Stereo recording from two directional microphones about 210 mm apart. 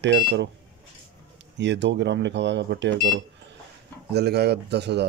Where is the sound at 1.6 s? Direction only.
60° right (ahead or behind).